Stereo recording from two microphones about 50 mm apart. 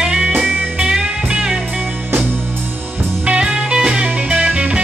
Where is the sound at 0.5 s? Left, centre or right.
Right.